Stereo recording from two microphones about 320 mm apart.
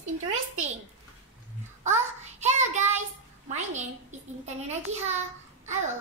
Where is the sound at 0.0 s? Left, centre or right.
Right.